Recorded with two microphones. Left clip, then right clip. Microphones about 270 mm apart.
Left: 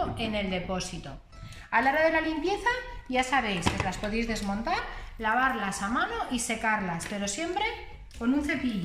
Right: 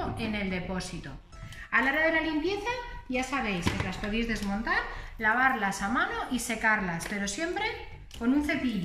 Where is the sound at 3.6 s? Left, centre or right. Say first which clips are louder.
Left 3 dB; centre.